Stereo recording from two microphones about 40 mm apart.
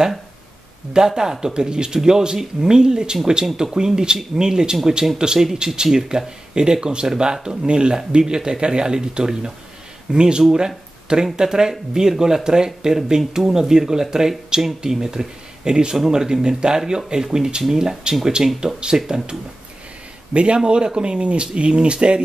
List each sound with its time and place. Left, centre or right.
0.9 s speech: centre
20.3 s speech: right